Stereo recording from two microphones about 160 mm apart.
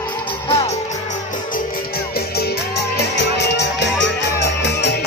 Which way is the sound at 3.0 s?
90° left.